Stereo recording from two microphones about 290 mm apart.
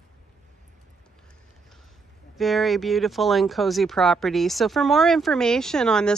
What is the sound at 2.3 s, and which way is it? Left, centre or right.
Speech, centre.